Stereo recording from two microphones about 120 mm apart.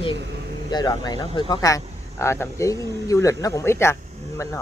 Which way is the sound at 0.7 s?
35° left (ahead or behind).